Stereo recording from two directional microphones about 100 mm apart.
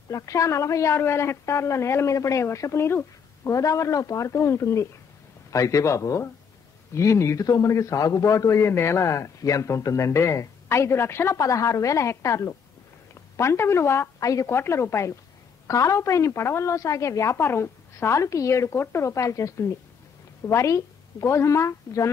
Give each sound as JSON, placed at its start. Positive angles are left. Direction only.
{"t": 0.1, "sound": "a woman's voice", "side_deg": 35}